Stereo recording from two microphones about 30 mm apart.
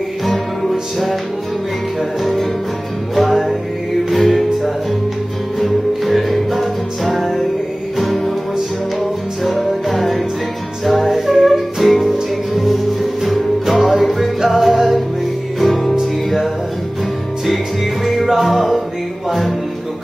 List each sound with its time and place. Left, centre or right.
0.3 s music: centre
3.2 s music: centre
5.6 s music: centre
9.4 s music: centre
13.2 s music: centre
18.0 s music: centre